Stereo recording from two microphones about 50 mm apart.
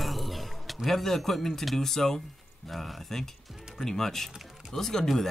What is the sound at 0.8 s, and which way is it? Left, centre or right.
Speech, centre.